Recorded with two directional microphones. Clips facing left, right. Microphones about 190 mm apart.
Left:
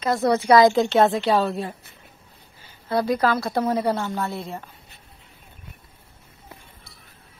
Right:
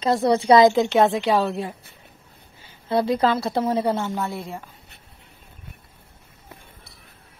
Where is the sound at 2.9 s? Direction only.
25° right (ahead or behind).